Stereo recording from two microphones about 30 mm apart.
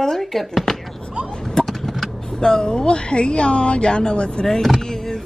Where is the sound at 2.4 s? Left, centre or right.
Left.